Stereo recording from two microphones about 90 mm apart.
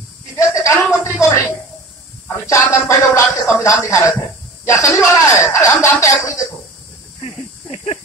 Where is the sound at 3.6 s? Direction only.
35° left (ahead or behind).